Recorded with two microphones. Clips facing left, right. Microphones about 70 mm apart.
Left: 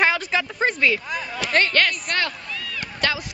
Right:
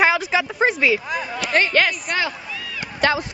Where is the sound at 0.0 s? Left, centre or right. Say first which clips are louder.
Right 3 dB; centre.